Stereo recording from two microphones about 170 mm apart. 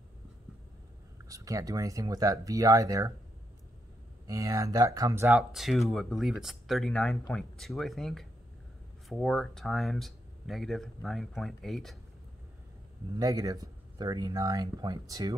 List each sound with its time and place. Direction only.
1.3 s speech: 20° right (ahead or behind)
4.3 s speech: 20° right (ahead or behind)
5.3 s speech: centre (ahead or behind)
13.1 s speech: 20° right (ahead or behind)